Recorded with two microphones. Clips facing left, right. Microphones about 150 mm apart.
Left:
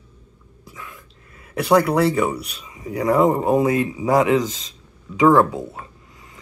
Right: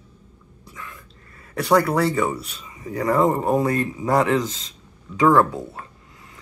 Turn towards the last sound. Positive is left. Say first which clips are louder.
# left 1 dB
turn(degrees=10)  # may be behind; listen again after turning